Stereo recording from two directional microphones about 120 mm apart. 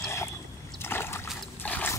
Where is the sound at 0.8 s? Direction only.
20° left (ahead or behind).